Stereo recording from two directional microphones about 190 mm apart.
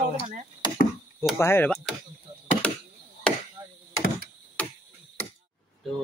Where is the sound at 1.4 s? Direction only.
15° left (ahead or behind).